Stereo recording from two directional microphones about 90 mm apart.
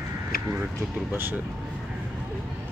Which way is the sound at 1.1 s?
25° right (ahead or behind).